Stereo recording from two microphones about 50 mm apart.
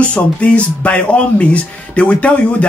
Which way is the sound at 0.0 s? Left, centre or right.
Left.